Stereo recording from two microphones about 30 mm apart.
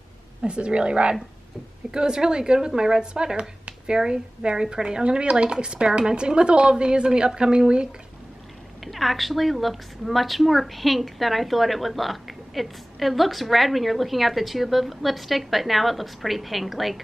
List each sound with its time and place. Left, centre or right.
0.5 s a woman's voice: right
1.9 s a woman's voice: right
8.8 s a woman's voice: centre